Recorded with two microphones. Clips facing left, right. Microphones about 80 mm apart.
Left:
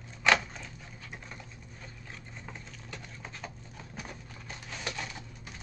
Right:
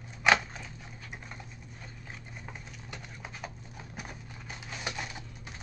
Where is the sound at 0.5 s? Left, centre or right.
Centre.